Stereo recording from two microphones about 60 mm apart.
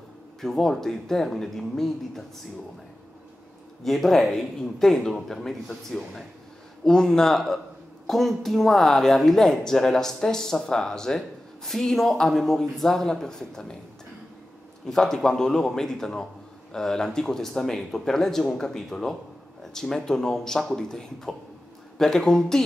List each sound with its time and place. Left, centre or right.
0.4 s speech: centre
3.8 s speech: centre
14.9 s speech: centre